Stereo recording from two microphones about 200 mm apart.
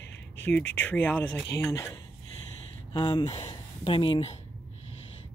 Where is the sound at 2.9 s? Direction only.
25° left (ahead or behind).